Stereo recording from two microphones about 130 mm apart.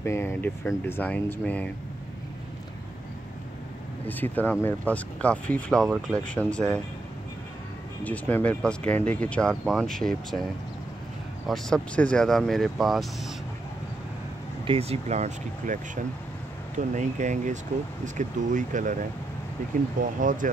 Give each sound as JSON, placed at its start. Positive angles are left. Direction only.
{"t": 0.0, "sound": "speech", "side_deg": 20}
{"t": 4.1, "sound": "speech", "side_deg": 15}
{"t": 8.0, "sound": "speech", "side_deg": 10}
{"t": 14.6, "sound": "speech", "side_deg": -45}
{"t": 16.9, "sound": "speech", "side_deg": -70}